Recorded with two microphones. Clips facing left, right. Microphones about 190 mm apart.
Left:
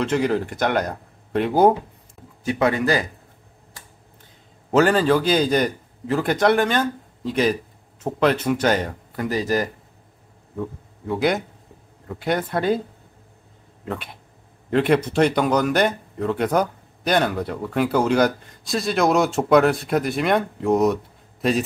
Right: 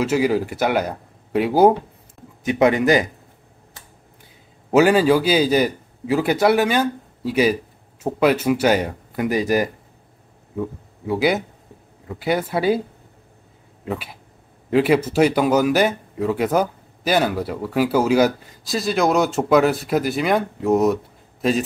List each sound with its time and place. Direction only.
0.0 s a man's voice: 5° right (ahead or behind)
2.4 s a man's voice: 20° right (ahead or behind)
4.6 s a man's voice: 10° right (ahead or behind)
11.1 s a man's voice: 5° right (ahead or behind)
13.8 s speech: 5° right (ahead or behind)